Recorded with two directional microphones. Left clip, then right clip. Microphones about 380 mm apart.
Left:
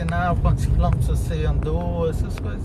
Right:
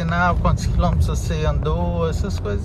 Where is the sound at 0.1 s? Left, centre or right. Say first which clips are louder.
Right 5 dB; centre.